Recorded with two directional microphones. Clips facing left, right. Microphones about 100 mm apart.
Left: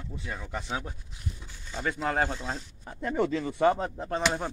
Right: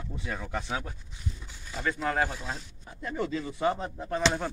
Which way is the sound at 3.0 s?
65° left (ahead or behind).